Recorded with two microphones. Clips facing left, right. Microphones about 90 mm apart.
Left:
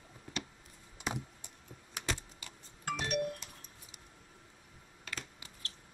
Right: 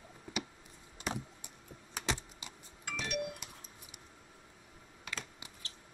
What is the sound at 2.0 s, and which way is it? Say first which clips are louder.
Computer keyboard: right 2 dB; 20° right (ahead or behind).